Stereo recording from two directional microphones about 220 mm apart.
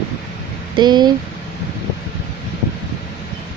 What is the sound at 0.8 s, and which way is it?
Speech, 20° right (ahead or behind).